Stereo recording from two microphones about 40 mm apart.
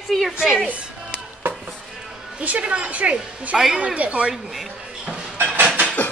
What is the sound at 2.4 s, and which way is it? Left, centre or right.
Speech, right.